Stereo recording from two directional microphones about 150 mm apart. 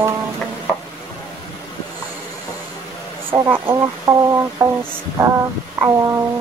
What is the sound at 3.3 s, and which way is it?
Speech, 15° right (ahead or behind).